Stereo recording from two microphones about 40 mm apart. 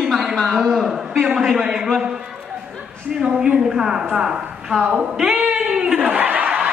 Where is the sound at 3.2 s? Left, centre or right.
Right.